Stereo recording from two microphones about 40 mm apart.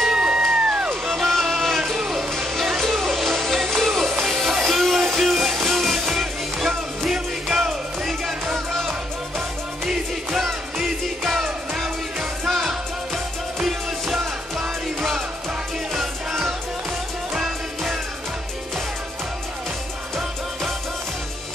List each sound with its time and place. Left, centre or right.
0.0 s music: centre
1.0 s music: centre
9.8 s music: centre
12.4 s music: centre